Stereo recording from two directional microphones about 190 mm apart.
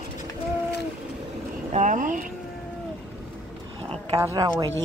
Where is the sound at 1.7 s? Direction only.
40° right (ahead or behind).